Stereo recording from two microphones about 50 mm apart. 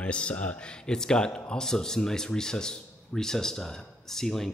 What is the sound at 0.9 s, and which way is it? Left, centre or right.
Speech, centre.